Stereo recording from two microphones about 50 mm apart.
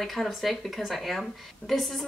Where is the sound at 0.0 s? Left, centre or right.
Centre.